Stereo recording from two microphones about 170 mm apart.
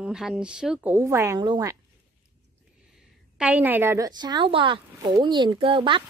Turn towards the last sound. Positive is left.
turn(degrees=-30)  # may be behind; listen again after turning